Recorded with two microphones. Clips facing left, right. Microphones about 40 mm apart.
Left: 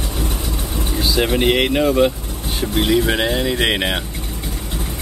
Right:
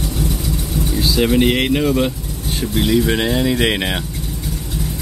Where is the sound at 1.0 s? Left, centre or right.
Centre.